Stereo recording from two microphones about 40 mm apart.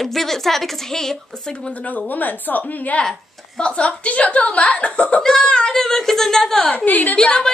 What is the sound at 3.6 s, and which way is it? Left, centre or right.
Speech, left.